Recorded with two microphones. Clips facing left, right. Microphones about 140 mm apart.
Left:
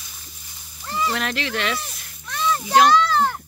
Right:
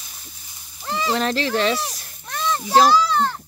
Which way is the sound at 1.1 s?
35° right (ahead or behind).